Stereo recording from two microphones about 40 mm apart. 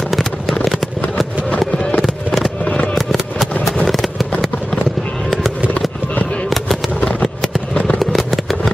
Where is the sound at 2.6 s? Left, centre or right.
Left.